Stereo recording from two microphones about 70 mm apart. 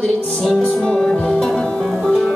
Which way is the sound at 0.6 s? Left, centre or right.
Centre.